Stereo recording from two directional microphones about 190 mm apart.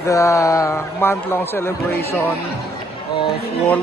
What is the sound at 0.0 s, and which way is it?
A man's voice, 15° left (ahead or behind).